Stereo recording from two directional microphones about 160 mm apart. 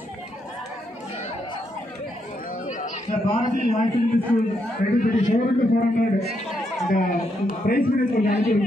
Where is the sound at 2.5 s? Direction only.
50° left (ahead or behind).